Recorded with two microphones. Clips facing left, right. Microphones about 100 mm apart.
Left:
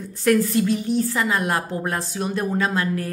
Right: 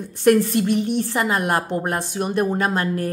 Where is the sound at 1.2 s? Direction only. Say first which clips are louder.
Right 2 dB; 45° right (ahead or behind).